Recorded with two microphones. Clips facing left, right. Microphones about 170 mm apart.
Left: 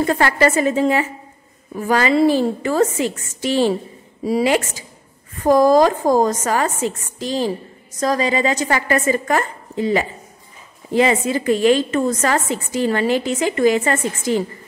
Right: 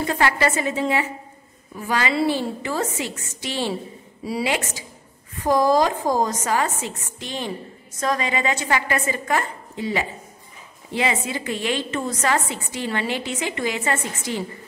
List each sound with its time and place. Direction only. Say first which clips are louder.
0.0 s a woman's voice: left 5 dB; 45° left (ahead or behind)